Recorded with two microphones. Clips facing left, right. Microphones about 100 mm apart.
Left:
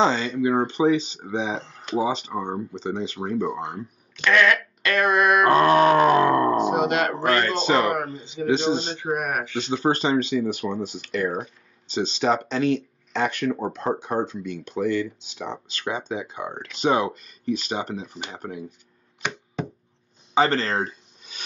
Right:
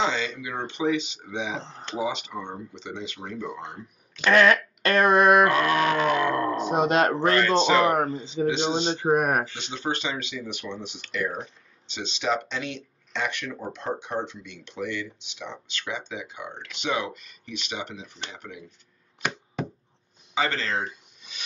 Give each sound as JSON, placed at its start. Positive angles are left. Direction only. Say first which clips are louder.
{"t": 0.0, "sound": "speech", "louder": "left 6 dB", "side_deg": 40}
{"t": 1.6, "sound": "speech", "louder": "right 1 dB", "side_deg": -30}
{"t": 2.0, "sound": "speech", "louder": "left 5 dB", "side_deg": 35}
{"t": 4.2, "sound": "speech", "louder": "right 1 dB", "side_deg": -35}
{"t": 5.5, "sound": "speech", "louder": "left 7 dB", "side_deg": 35}
{"t": 6.7, "sound": "speech", "louder": "even", "side_deg": -35}
{"t": 7.3, "sound": "speech", "louder": "right 1 dB", "side_deg": 40}
{"t": 7.9, "sound": "speech", "louder": "right 2 dB", "side_deg": -30}
{"t": 8.5, "sound": "speech", "louder": "left 3 dB", "side_deg": 40}
{"t": 8.9, "sound": "speech", "louder": "right 4 dB", "side_deg": -35}
{"t": 9.8, "sound": "speech", "louder": "left 8 dB", "side_deg": 40}
{"t": 19.2, "sound": "chop", "louder": "left 1 dB", "side_deg": 0}
{"t": 20.3, "sound": "speech", "louder": "left 6 dB", "side_deg": 40}